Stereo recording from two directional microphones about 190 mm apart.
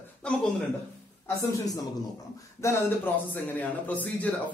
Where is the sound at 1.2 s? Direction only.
20° left (ahead or behind).